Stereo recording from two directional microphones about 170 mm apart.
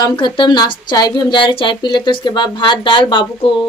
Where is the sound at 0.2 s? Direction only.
25° left (ahead or behind).